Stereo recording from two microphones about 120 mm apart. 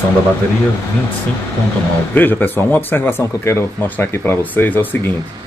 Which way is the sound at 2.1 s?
15° left (ahead or behind).